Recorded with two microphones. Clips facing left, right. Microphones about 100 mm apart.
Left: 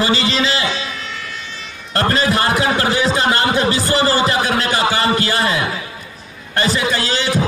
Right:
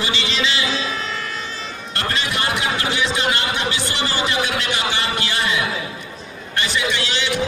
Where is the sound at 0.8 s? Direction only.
35° right (ahead or behind).